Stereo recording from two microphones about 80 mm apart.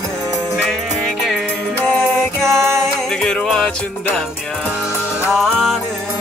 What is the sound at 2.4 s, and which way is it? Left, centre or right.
Music, right.